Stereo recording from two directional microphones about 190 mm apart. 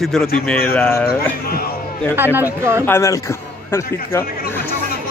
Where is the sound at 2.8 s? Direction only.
15° left (ahead or behind).